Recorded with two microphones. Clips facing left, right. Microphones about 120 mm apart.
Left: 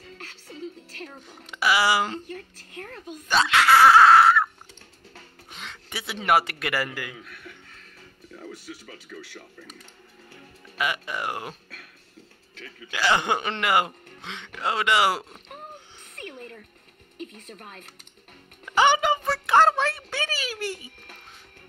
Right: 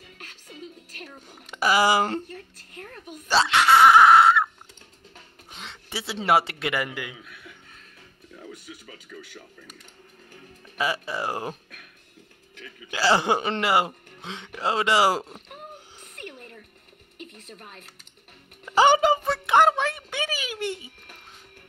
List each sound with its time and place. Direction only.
0.5 s music: 10° right (ahead or behind)
1.6 s speech: 45° right (ahead or behind)
3.3 s speech: 25° right (ahead or behind)
10.8 s speech: 30° right (ahead or behind)
12.5 s music: 15° right (ahead or behind)
12.9 s speech: 35° right (ahead or behind)
15.2 s a sound: 5° right (ahead or behind)
17.4 s speech: 45° left (ahead or behind)
18.8 s a sound: 35° right (ahead or behind)
19.3 s a sound: 20° right (ahead or behind)